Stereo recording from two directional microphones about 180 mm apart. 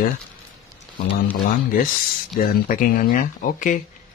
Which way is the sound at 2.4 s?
50° left (ahead or behind).